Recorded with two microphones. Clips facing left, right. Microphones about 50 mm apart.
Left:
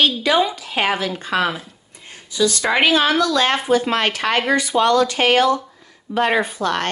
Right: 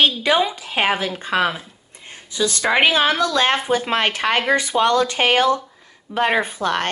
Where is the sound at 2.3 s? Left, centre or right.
Right.